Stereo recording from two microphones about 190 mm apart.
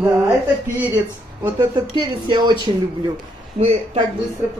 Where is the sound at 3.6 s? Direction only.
30° right (ahead or behind).